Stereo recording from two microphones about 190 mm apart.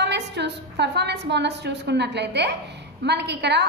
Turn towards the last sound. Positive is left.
turn(degrees=-60)  # may be behind; listen again after turning